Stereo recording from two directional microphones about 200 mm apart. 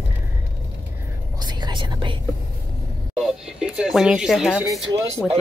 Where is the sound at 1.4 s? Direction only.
20° right (ahead or behind).